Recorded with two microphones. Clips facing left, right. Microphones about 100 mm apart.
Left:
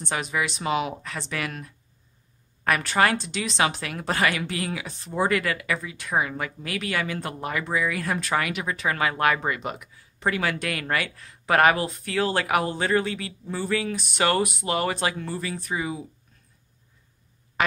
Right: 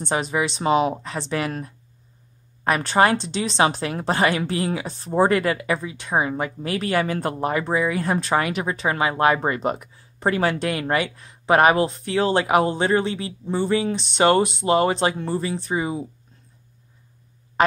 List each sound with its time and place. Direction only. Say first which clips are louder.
0.0 s a woman's voice: right 5 dB; 30° right (ahead or behind)
17.6 s quack: right 6 dB; 35° right (ahead or behind)